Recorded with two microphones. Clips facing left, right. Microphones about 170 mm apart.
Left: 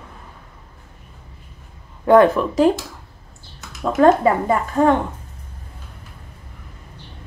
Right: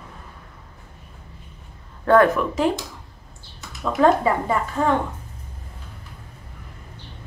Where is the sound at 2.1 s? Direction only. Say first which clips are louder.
Left 4 dB; 15° left (ahead or behind).